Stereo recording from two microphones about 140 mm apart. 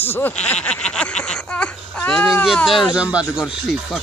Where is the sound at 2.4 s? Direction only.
Centre (ahead or behind).